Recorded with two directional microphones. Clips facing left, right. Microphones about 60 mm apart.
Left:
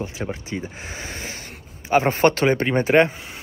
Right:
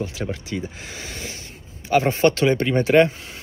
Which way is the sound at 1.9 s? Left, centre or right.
Left.